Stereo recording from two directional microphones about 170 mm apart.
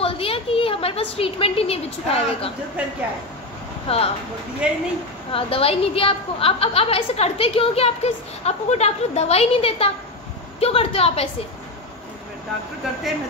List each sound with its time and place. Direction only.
0.0 s a woman's voice: 35° left (ahead or behind)
2.8 s speech: 5° right (ahead or behind)
3.8 s speech: 35° left (ahead or behind)
4.6 s speech: 5° right (ahead or behind)
5.3 s a woman's voice: 35° left (ahead or behind)